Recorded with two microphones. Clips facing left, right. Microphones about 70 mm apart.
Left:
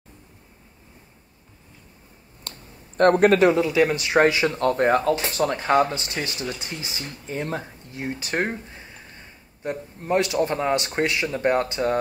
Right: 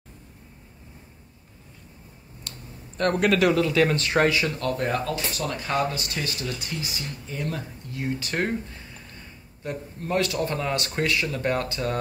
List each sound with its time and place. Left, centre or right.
2.5 s a sound: left
3.0 s speech: left
4.5 s speech: left